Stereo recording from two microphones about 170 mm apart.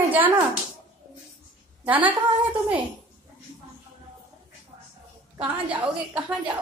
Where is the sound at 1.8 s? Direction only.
10° right (ahead or behind).